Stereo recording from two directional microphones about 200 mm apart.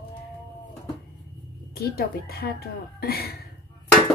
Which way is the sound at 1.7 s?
50° left (ahead or behind).